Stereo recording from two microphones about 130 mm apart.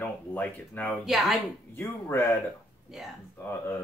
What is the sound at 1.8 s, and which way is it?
Speech, 20° left (ahead or behind).